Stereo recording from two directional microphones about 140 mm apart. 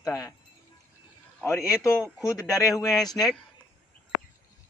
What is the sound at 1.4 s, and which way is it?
Speech, 20° left (ahead or behind).